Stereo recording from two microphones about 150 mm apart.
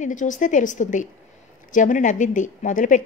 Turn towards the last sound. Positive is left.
turn(degrees=60)  # may be behind; listen again after turning